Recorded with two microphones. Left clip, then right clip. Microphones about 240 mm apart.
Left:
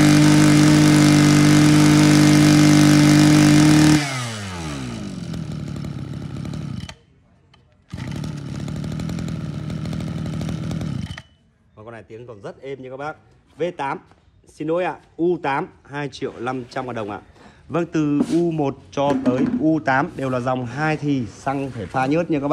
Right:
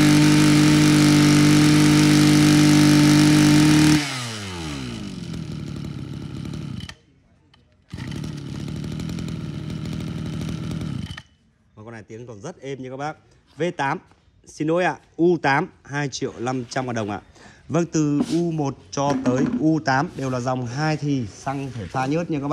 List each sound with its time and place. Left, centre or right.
0.0 s vehicle: centre
7.9 s chainsaw: centre
11.8 s a sound: right
14.5 s speech: right; by 22.5 s centre